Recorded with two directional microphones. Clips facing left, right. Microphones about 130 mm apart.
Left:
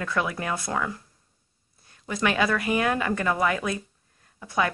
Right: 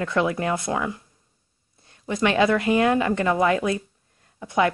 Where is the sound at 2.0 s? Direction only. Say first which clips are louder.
Right 4 dB; 25° right (ahead or behind).